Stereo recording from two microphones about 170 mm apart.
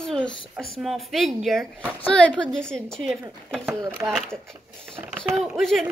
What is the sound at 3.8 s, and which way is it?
Speech, 15° right (ahead or behind).